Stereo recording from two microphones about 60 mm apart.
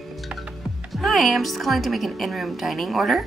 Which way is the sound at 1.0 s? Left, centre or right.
Centre.